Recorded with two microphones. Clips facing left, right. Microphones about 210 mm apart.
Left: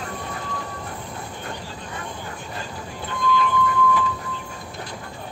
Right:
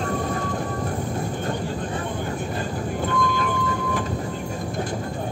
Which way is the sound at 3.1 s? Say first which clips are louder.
Left 4 dB; 50° right (ahead or behind).